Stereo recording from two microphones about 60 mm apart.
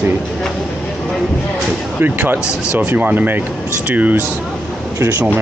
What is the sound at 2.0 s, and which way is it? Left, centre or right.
Speech, right.